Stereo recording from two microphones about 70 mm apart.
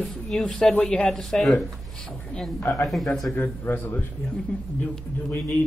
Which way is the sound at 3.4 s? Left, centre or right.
Left.